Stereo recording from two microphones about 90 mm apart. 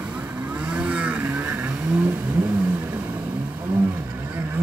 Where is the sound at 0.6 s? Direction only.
10° right (ahead or behind).